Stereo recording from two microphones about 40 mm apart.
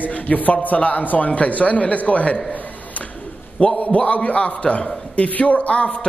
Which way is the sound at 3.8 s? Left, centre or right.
Left.